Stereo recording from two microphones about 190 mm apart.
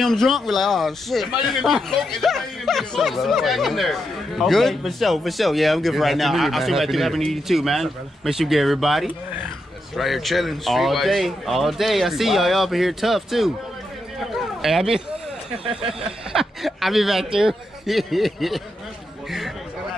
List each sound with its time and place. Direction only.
0.0 s a man's voice: centre (ahead or behind)
15.5 s speech: 30° right (ahead or behind)
15.9 s speech: centre (ahead or behind)